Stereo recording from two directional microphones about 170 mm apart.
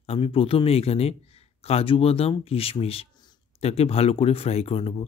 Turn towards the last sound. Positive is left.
turn(degrees=35)  # may be behind; listen again after turning